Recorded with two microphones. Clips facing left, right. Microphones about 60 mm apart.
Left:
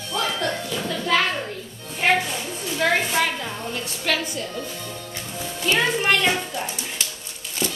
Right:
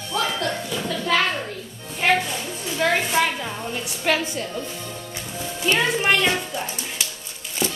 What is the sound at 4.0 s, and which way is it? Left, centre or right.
Speech, right.